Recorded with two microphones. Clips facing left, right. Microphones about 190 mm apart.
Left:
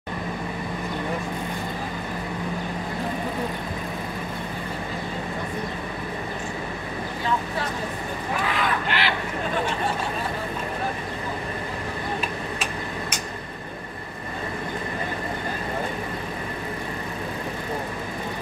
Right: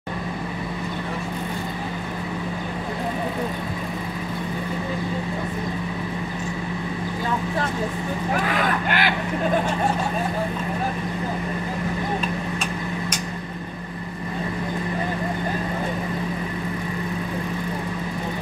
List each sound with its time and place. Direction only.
8.8 s vehicle: 50° right (ahead or behind)